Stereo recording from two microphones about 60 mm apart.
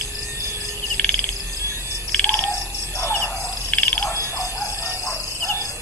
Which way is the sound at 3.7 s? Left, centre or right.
Centre.